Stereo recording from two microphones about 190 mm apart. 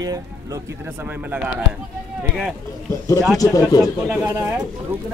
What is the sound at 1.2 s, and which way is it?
Speech, 5° right (ahead or behind).